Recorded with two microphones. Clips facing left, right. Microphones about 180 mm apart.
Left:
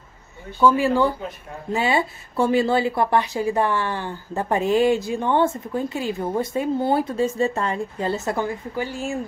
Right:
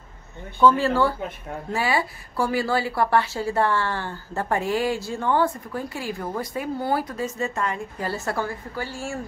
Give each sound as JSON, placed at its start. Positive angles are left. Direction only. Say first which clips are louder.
{"t": 0.6, "sound": "a woman's voice", "louder": "left 1 dB", "side_deg": 10}